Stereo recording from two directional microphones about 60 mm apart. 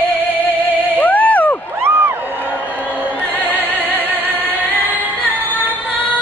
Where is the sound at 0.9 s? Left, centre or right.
Left.